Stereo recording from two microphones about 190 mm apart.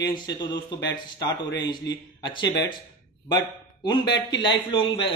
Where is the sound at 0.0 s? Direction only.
20° left (ahead or behind).